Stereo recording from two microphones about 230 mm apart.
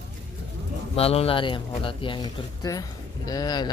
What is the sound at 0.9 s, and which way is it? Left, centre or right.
Speech, left.